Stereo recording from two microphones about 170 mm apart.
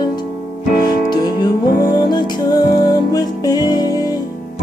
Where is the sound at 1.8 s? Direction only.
25° left (ahead or behind).